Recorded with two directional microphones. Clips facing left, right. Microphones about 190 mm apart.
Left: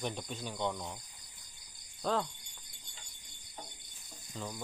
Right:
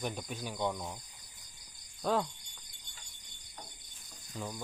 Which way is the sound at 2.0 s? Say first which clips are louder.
Right 2 dB; 10° right (ahead or behind).